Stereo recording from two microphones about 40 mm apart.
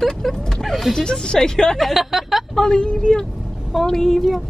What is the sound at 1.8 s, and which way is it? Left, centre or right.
Speech, centre.